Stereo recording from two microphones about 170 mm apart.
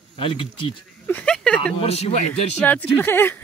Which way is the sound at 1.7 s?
35° left (ahead or behind).